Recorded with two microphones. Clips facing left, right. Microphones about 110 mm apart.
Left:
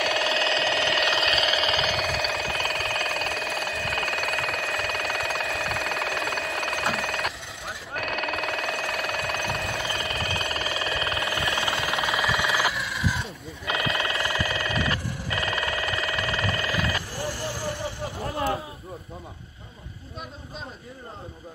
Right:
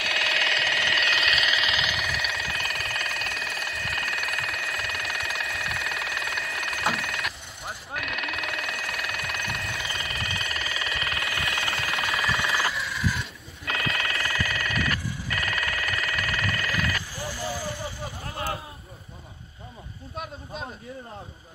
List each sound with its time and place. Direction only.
0.0 s alarm clock: 30° left (ahead or behind)
4.3 s telephone bell ringing: 30° left (ahead or behind)
7.9 s a sound: 40° left (ahead or behind); by 12.3 s 25° left (ahead or behind)
12.5 s a sound: centre (ahead or behind)
13.1 s telephone bell ringing: 25° left (ahead or behind)
17.1 s frog: 70° left (ahead or behind)